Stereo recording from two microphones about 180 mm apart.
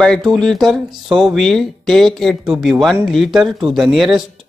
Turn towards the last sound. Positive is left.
turn(degrees=0)  # may be behind; listen again after turning